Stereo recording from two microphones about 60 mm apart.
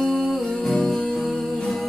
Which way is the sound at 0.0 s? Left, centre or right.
Centre.